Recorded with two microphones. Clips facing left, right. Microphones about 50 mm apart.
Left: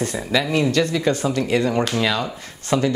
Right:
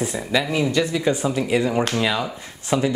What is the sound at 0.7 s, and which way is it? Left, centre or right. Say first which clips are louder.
Speech: left 1 dB; centre.